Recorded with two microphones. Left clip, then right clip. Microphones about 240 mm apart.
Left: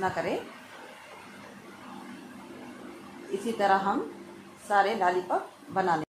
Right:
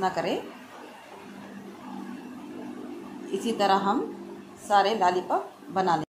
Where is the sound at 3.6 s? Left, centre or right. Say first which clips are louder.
Right 1 dB; centre.